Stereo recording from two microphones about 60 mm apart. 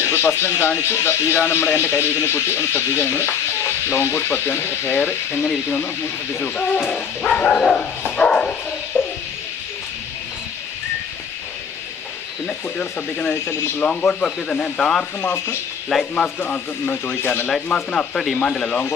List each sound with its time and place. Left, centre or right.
0.1 s speech: left; by 7.8 s centre
8.2 s bow-wow: left
9.0 s music: left
12.4 s speech: centre
15.9 s speech: centre
16.4 s speech: left
17.7 s speech: centre